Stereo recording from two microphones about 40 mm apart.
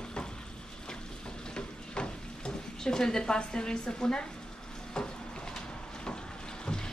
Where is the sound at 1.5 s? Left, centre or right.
Left.